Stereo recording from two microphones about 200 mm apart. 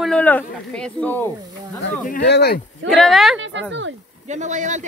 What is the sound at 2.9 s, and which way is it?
Speech, centre (ahead or behind).